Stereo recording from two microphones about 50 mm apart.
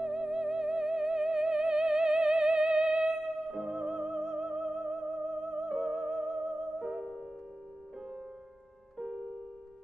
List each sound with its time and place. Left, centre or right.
0.0 s music: centre
8.9 s music: centre